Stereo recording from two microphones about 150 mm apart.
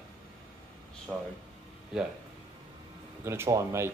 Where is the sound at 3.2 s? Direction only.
15° right (ahead or behind).